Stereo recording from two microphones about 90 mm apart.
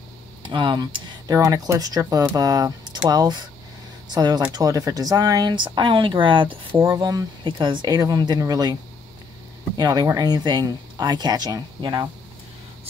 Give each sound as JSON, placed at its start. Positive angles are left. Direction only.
{"t": 0.4, "sound": "speech", "side_deg": -60}
{"t": 6.8, "sound": "speech", "side_deg": -40}
{"t": 7.4, "sound": "speech", "side_deg": -60}
{"t": 7.9, "sound": "speech", "side_deg": -40}
{"t": 9.8, "sound": "speech", "side_deg": -45}